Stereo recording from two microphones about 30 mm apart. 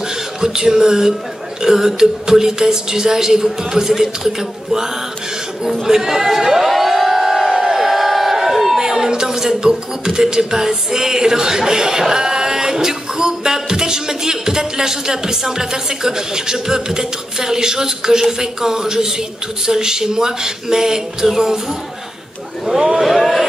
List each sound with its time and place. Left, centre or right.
0.4 s speech: right
5.9 s speech: centre
6.9 s crowd: centre
7.4 s crowd: right
7.7 s crowd: centre
8.7 s speech: centre
22.8 s speech: right
23.0 s speech: centre